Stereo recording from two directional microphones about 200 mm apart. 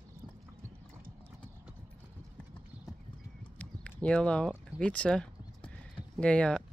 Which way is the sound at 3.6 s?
5° left (ahead or behind).